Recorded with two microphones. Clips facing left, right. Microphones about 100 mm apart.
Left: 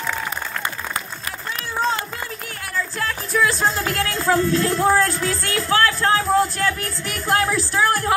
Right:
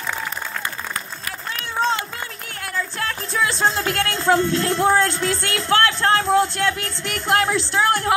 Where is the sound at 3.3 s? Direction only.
25° right (ahead or behind).